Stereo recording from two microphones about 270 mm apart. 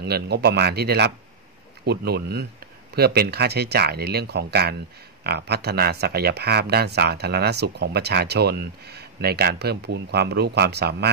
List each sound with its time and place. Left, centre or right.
0.0 s speech: right